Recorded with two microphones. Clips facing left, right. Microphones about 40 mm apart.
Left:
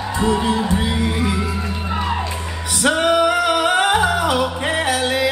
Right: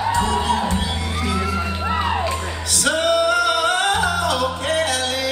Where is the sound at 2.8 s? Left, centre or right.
Centre.